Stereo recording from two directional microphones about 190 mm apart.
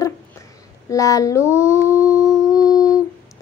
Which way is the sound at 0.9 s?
15° left (ahead or behind).